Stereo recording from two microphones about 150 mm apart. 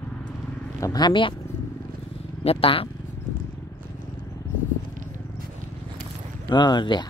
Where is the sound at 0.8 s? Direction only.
25° left (ahead or behind).